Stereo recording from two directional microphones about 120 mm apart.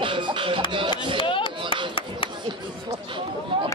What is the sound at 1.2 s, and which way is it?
Chop, 45° left (ahead or behind).